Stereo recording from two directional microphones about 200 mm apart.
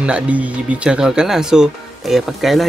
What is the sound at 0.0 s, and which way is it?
Speech, 5° right (ahead or behind).